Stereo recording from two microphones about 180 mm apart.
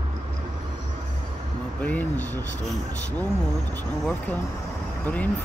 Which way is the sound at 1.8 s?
10° left (ahead or behind).